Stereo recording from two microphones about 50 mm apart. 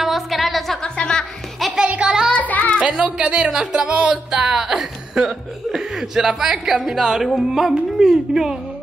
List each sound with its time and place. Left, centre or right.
0.0 s a sound: centre
0.8 s music: centre
1.9 s music: right
2.3 s music: left
3.0 s speech: centre
7.3 s music: centre